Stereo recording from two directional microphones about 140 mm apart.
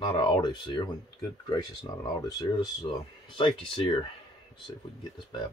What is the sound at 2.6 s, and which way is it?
Speech, 35° left (ahead or behind).